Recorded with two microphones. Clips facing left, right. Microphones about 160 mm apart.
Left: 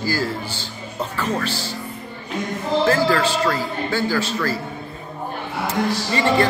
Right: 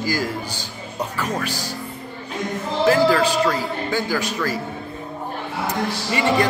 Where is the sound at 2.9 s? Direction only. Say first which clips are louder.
Right 5 dB; 10° right (ahead or behind).